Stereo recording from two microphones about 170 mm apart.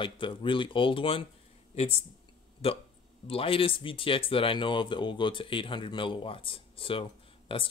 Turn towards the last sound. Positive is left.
turn(degrees=35)  # may be behind; listen again after turning